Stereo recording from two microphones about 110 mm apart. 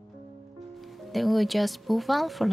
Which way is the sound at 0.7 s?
Centre (ahead or behind).